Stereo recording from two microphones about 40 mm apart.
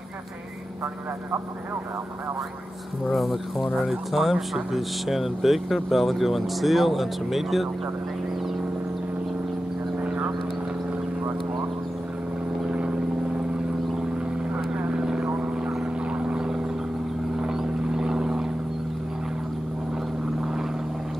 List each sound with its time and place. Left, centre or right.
3.1 s speech: centre
12.6 s vehicle: right
14.9 s vehicle: centre
15.2 s vehicle: right
16.3 s a sound: centre
17.4 s vehicle: centre